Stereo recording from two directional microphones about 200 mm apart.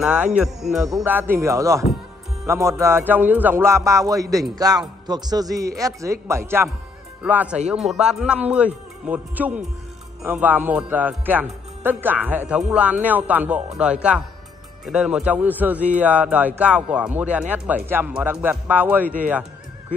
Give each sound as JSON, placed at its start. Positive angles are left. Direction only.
{"t": 0.0, "sound": "a man's voice", "side_deg": -5}